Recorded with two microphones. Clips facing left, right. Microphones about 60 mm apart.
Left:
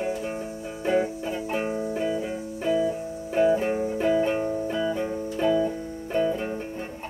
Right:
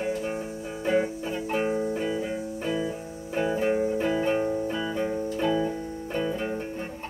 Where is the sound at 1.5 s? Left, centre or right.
Centre.